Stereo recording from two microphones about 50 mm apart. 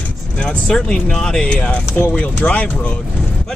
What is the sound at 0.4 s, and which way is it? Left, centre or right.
Speech, left.